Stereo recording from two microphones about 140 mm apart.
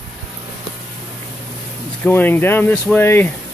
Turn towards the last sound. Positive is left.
turn(degrees=15)  # may be behind; listen again after turning